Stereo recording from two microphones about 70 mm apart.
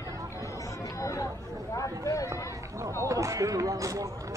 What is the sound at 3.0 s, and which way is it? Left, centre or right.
Speech, right.